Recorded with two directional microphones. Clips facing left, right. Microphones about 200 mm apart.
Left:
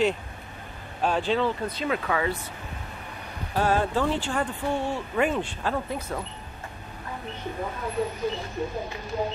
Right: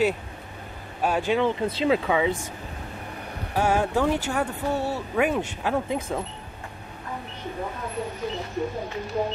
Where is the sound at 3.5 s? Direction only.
10° right (ahead or behind).